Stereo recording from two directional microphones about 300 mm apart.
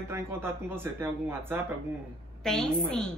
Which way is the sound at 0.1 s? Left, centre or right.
Centre.